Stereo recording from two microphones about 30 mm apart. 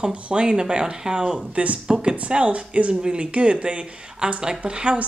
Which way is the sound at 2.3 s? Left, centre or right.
Right.